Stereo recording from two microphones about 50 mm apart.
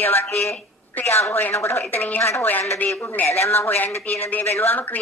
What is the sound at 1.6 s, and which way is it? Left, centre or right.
Speech, left.